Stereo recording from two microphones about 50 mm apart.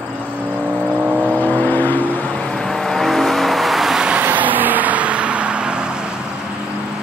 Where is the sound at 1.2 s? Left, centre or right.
Left.